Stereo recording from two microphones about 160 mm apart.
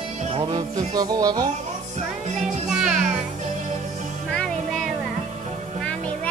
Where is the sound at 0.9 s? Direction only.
25° right (ahead or behind).